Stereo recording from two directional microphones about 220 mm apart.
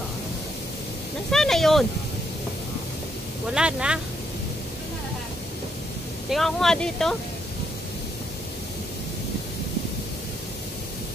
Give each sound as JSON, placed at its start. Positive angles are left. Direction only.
{"t": 1.3, "sound": "speech", "side_deg": 0}
{"t": 3.4, "sound": "speech", "side_deg": -5}
{"t": 6.3, "sound": "speech", "side_deg": 0}